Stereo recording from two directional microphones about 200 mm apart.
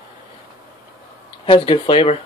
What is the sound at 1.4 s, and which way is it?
Speech, 25° left (ahead or behind).